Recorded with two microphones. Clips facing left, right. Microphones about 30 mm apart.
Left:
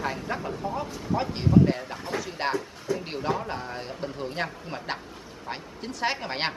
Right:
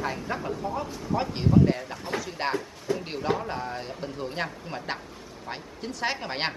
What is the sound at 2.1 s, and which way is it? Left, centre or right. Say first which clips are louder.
Speech: left 1 dB; centre.